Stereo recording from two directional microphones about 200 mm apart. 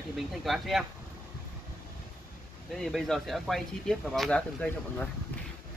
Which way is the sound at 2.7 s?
Centre (ahead or behind).